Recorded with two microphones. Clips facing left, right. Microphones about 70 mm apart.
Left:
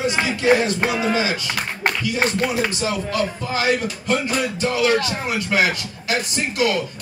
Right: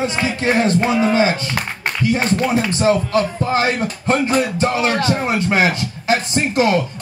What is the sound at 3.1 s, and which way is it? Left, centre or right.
Music, right.